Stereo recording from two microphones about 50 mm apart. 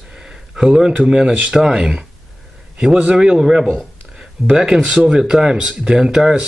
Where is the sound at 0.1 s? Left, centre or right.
Centre.